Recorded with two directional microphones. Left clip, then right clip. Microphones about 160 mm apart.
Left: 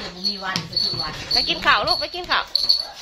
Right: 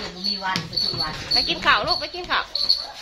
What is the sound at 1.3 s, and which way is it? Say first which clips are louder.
Speech: left 1 dB; 15° left (ahead or behind).